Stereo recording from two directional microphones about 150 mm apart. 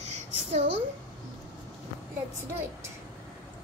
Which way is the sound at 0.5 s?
45° right (ahead or behind).